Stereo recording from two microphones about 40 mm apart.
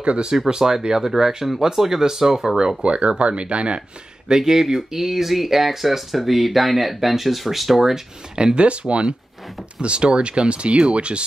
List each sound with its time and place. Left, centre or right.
0.0 s speech: right
0.5 s speech: centre
2.8 s speech: right
4.3 s speech: centre
8.4 s speech: right